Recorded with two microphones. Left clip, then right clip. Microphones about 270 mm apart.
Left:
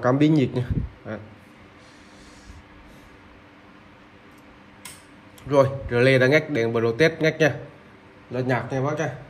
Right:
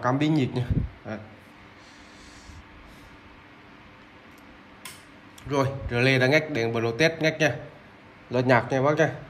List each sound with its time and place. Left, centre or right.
0.0 s a man's voice: centre
5.5 s speech: centre
8.3 s speech: centre